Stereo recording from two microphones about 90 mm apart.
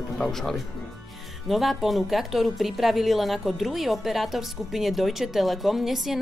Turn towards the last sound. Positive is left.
turn(degrees=-5)  # may be behind; listen again after turning